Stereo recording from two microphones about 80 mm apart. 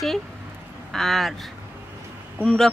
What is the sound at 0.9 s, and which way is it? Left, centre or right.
Speech, centre.